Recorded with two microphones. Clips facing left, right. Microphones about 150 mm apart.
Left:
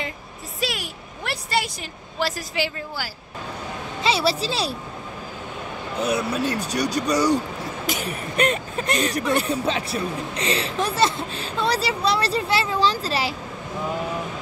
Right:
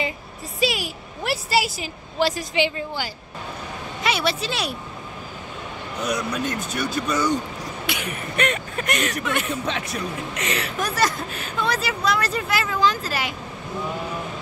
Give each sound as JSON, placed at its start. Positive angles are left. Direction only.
{"t": 0.6, "sound": "a woman's voice", "side_deg": 0}
{"t": 4.0, "sound": "speech", "side_deg": 30}
{"t": 5.9, "sound": "speech", "side_deg": 30}